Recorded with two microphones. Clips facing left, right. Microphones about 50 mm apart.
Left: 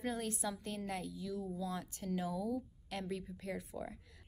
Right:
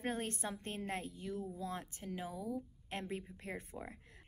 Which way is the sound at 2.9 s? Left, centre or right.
Right.